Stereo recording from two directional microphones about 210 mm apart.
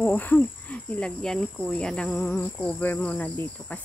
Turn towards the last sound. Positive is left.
turn(degrees=5)  # may be behind; listen again after turning